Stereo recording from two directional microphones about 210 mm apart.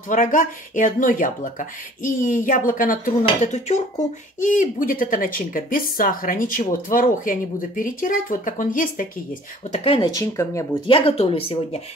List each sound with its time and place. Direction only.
0.1 s speech: 40° left (ahead or behind)
9.7 s speech: 25° left (ahead or behind)
11.0 s speech: 25° left (ahead or behind)